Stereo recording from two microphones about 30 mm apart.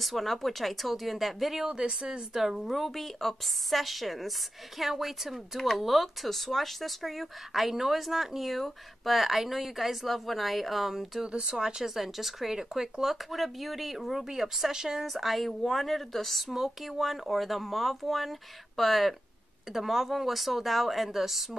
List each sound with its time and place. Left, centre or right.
0.0 s speech: centre
1.6 s speech: right
2.6 s speech: centre
11.5 s speech: centre
11.9 s speech: centre
12.5 s speech: centre
13.0 s speech: centre
15.0 s speech: centre
16.5 s speech: centre